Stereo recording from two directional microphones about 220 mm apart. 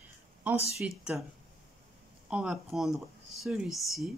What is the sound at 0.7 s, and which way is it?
Speech, centre (ahead or behind).